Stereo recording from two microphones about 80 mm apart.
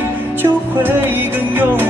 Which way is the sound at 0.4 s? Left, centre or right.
Right.